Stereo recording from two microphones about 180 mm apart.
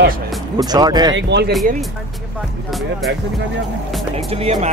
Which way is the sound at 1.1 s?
70° right (ahead or behind).